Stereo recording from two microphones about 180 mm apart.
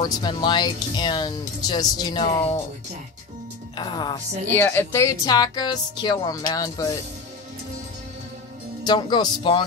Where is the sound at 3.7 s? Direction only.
25° left (ahead or behind).